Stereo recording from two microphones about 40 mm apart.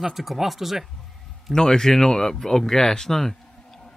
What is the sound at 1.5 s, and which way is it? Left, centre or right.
Speech, centre.